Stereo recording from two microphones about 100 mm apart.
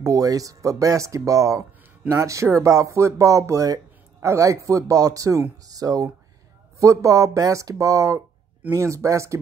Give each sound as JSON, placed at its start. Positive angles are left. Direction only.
{"t": 0.0, "sound": "speech", "side_deg": -35}